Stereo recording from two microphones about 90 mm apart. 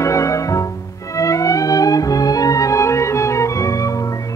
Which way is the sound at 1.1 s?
35° left (ahead or behind).